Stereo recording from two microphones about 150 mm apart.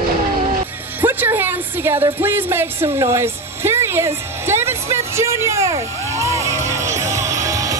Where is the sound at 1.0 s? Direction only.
15° right (ahead or behind).